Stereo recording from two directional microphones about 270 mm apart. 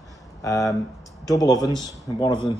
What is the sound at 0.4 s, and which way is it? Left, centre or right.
Speech, centre.